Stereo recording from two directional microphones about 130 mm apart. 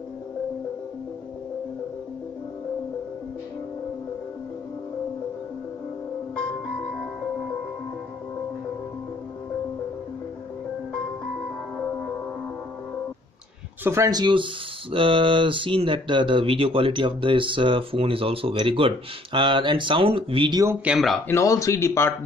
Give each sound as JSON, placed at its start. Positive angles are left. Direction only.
{"t": 13.8, "sound": "speech", "side_deg": -25}
{"t": 20.8, "sound": "speech", "side_deg": -5}
{"t": 21.3, "sound": "speech", "side_deg": 25}